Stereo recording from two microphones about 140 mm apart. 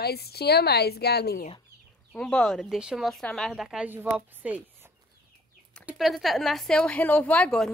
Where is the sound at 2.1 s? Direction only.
5° left (ahead or behind); by 4.9 s 10° right (ahead or behind).